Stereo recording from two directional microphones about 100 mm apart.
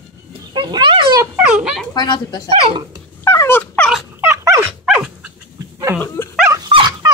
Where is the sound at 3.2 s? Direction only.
30° left (ahead or behind).